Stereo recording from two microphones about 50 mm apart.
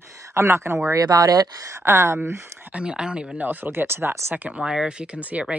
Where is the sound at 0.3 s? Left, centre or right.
Right.